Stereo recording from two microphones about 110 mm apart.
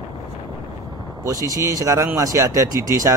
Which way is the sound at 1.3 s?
30° right (ahead or behind).